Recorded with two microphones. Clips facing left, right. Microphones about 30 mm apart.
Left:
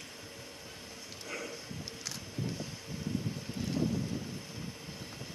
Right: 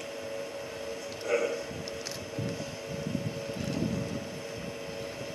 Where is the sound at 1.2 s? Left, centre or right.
Right.